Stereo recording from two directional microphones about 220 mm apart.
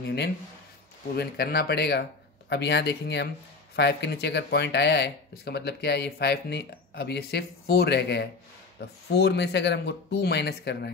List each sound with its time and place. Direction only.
0.0 s speech: 50° left (ahead or behind)